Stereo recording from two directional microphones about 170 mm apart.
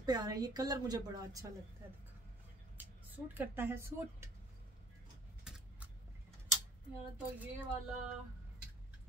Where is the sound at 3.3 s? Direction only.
15° right (ahead or behind).